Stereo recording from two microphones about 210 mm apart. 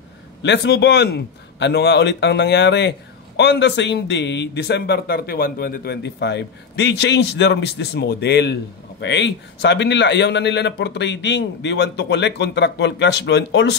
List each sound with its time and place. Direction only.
0.4 s a man's voice: 55° left (ahead or behind)